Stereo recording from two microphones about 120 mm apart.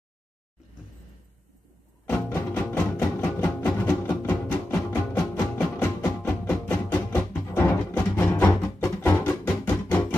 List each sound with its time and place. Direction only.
2.0 s music: 15° left (ahead or behind)